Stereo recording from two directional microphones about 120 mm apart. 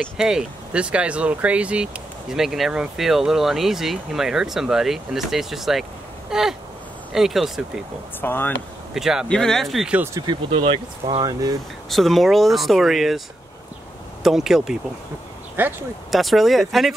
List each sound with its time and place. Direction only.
0.2 s speech: 5° right (ahead or behind)
8.2 s speech: 15° left (ahead or behind)
8.9 s speech: 5° right (ahead or behind)
10.2 s speech: 30° right (ahead or behind)
10.5 s speech: 45° right (ahead or behind)
11.9 s speech: centre (ahead or behind)
14.2 s speech: 5° right (ahead or behind)
15.6 s speech: 15° right (ahead or behind)
16.1 s speech: centre (ahead or behind)